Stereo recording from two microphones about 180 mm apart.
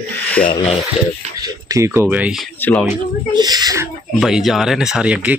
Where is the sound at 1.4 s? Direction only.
15° right (ahead or behind).